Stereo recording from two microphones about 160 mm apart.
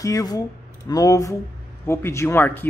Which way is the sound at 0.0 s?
20° left (ahead or behind).